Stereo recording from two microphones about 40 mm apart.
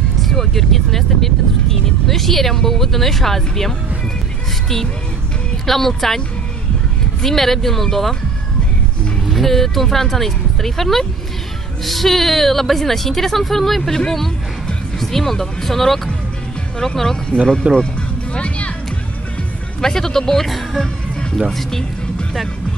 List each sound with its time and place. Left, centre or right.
0.2 s speech: centre
5.7 s speech: centre
9.3 s a woman's voice: centre
17.7 s music: left
19.8 s speech: centre